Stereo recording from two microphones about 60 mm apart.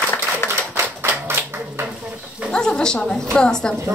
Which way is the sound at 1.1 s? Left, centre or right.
Right.